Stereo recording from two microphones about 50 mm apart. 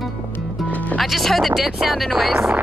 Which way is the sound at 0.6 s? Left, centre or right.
Left.